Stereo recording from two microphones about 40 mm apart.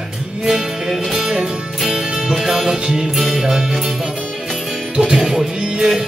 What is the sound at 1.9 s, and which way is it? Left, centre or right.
Music, centre.